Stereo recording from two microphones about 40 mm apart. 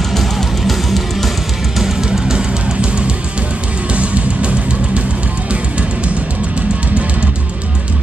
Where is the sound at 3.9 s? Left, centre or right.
Right.